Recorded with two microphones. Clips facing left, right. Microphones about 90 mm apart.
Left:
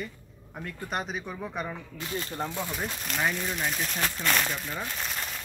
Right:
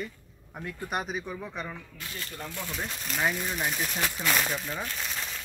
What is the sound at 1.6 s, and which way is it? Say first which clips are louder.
Speech: left 3 dB; 20° left (ahead or behind).